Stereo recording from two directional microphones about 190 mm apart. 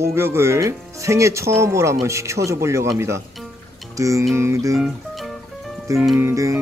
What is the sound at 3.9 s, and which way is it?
Speech, 15° right (ahead or behind).